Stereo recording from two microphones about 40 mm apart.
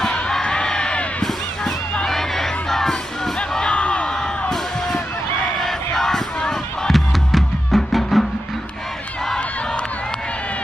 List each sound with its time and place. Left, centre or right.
0.1 s crowd: centre
2.0 s music: centre
3.7 s crowd: left
4.5 s crowd: centre
6.9 s music: centre